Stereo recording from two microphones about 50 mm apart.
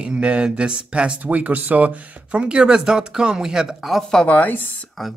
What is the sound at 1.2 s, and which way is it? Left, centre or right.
Speech, right.